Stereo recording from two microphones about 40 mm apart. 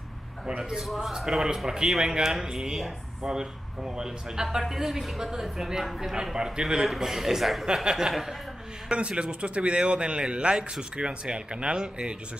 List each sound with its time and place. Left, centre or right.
0.7 s a man's voice: centre
6.3 s a man's voice: centre
8.9 s a man's voice: right